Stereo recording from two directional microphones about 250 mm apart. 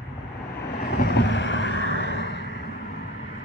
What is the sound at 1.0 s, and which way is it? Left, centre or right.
Vehicle, left.